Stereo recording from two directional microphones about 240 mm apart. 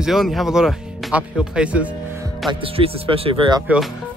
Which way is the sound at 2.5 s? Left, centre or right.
Right.